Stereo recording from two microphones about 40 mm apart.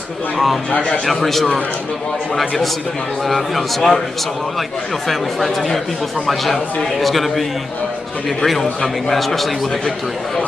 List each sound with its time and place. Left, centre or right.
0.7 s a man's voice: left
1.0 s a man's voice: centre
3.3 s a man's voice: centre